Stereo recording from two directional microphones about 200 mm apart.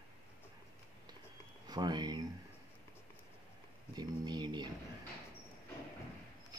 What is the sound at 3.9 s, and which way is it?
Speech, 20° right (ahead or behind).